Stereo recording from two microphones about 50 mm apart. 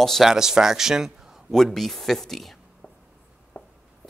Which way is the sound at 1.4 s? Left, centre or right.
Centre.